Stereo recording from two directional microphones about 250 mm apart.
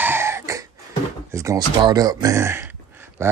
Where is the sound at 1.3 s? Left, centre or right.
Centre.